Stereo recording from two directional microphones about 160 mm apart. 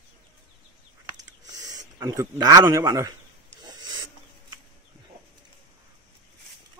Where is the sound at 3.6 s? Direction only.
25° right (ahead or behind).